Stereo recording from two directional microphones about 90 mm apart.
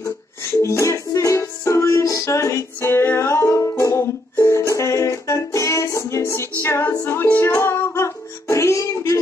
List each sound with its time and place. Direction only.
0.5 s music: 30° left (ahead or behind)